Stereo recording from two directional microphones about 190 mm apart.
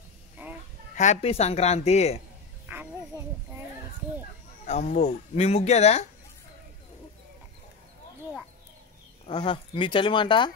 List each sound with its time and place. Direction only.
0.4 s goose: 10° right (ahead or behind)
0.9 s speech: 35° left (ahead or behind)
2.7 s a sound: 10° right (ahead or behind)
4.6 s speech: 40° left (ahead or behind)
9.3 s speech: 25° left (ahead or behind)